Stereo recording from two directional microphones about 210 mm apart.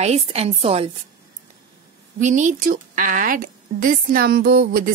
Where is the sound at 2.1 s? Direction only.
35° right (ahead or behind).